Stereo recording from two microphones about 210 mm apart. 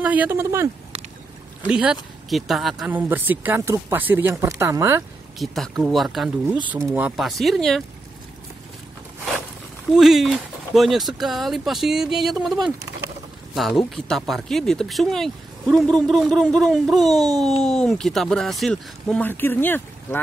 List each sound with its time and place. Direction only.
0.0 s speech: 5° right (ahead or behind)
1.7 s speech: 5° right (ahead or behind)
5.4 s speech: centre (ahead or behind)
9.9 s speech: centre (ahead or behind)
13.6 s speech: centre (ahead or behind)